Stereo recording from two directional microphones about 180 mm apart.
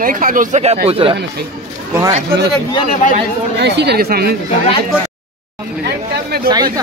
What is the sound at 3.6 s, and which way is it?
Speech, 70° right (ahead or behind).